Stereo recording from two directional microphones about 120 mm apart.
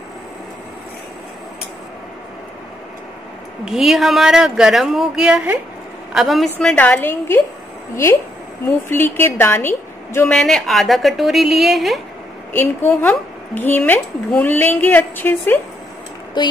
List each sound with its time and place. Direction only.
3.6 s a woman's voice: 5° right (ahead or behind); by 10.2 s 20° left (ahead or behind)
10.2 s speech: 5° left (ahead or behind)
12.5 s speech: 15° left (ahead or behind)